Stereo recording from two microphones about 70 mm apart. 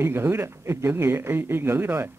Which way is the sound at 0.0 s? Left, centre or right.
Right.